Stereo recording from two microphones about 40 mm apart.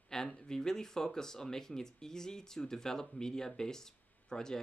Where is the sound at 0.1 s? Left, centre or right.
Centre.